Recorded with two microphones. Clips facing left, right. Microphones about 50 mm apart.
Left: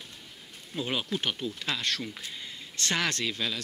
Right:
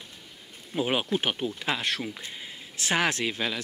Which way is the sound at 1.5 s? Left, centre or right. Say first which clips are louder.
Right 3 dB; centre.